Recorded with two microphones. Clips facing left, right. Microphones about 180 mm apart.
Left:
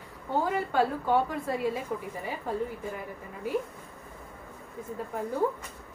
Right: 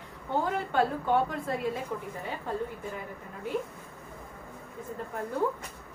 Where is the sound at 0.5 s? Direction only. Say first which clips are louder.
Left 1 dB; 5° left (ahead or behind).